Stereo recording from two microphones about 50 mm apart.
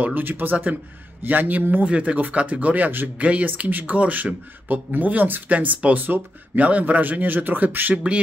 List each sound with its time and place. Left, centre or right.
0.0 s speech: right
3.2 s speech: right
7.9 s speech: right